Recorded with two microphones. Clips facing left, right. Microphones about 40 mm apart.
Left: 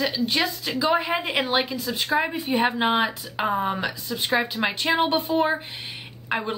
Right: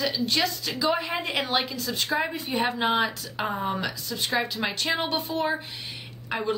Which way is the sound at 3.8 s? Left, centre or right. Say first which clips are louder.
Left 2 dB; centre.